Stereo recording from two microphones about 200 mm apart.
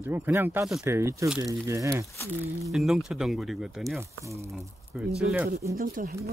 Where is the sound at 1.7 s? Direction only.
15° right (ahead or behind).